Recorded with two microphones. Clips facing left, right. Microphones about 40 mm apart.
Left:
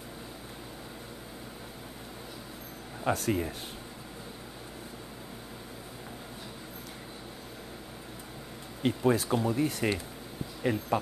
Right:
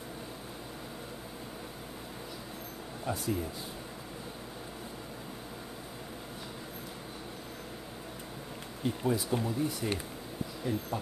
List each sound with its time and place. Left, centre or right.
3.1 s speech: left
8.8 s speech: left